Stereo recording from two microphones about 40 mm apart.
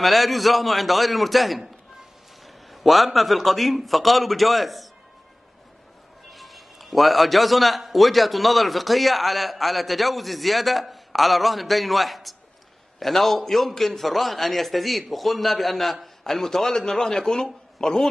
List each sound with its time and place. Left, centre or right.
0.0 s a man's voice: centre
6.3 s a man's voice: centre